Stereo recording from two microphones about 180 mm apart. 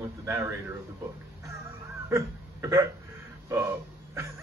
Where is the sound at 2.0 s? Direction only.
15° right (ahead or behind).